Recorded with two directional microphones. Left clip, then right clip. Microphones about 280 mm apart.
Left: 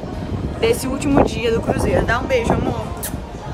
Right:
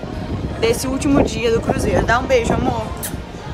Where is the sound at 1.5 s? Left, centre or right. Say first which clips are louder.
Right 1 dB; right.